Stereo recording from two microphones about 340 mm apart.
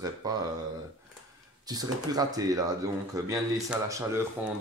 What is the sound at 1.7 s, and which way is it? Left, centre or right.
Speech, centre.